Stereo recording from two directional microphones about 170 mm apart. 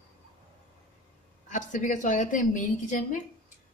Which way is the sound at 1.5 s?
45° left (ahead or behind).